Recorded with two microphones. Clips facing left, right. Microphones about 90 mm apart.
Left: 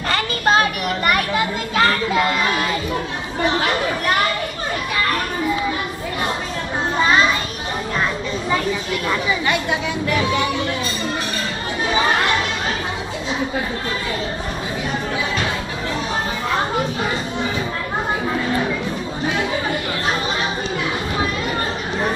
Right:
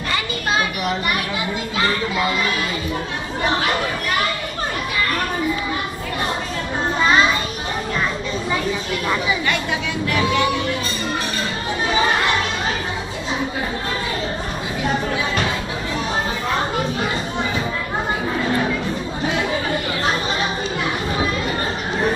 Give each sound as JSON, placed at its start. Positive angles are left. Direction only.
{"t": 0.1, "sound": "a child's voice", "side_deg": 50}